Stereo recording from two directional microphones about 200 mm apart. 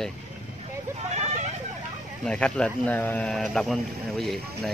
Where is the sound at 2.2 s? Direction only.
5° left (ahead or behind).